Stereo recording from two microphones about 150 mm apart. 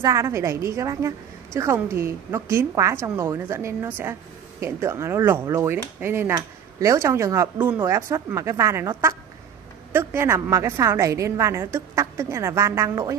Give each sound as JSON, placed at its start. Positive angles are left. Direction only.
{"t": 0.0, "sound": "a woman's voice", "side_deg": -20}